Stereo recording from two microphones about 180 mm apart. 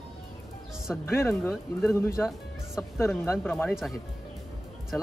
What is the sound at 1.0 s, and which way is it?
Speech, 15° left (ahead or behind).